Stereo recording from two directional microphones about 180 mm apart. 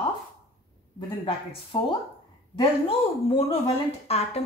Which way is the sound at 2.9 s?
30° left (ahead or behind).